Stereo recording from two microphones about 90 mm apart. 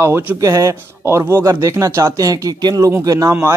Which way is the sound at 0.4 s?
35° right (ahead or behind).